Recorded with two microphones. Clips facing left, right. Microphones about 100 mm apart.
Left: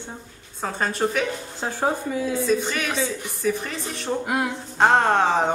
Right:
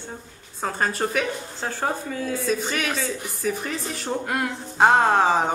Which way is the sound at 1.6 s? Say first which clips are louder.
Left 3 dB; 15° left (ahead or behind).